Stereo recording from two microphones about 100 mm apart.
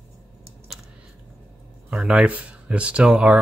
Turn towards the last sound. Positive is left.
turn(degrees=-10)  # may be behind; listen again after turning